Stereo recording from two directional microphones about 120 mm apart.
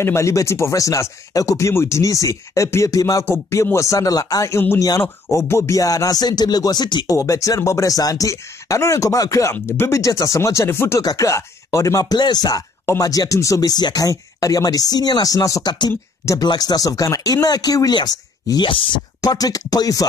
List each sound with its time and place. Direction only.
0.0 s speech: 25° left (ahead or behind)
7.2 s speech: 25° left (ahead or behind)
18.7 s speech: 45° left (ahead or behind)
19.2 s speech: 30° left (ahead or behind)